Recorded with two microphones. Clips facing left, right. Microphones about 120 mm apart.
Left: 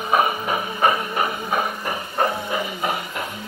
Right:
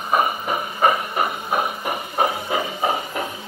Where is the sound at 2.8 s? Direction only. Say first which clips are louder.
Right 3 dB; 30° right (ahead or behind).